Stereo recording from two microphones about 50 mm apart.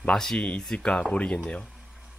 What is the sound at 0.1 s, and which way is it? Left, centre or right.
Speech, centre.